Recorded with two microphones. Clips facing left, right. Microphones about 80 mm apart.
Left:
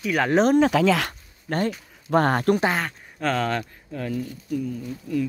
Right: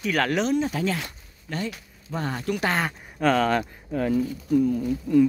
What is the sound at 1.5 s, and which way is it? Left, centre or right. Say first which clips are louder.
Speech: left 6 dB; left.